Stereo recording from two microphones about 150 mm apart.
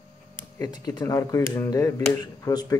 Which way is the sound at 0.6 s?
25° left (ahead or behind).